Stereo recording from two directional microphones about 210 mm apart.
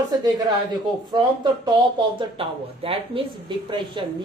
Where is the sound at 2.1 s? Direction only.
25° right (ahead or behind).